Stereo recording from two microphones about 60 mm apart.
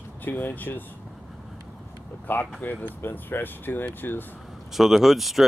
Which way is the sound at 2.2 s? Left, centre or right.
Left.